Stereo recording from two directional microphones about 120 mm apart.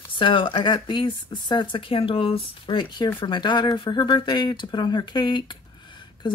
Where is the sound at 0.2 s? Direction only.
45° left (ahead or behind).